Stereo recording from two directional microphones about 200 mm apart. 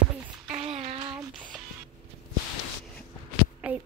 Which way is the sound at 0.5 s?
35° right (ahead or behind).